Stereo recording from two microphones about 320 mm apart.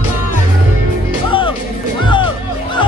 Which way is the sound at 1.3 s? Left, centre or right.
Centre.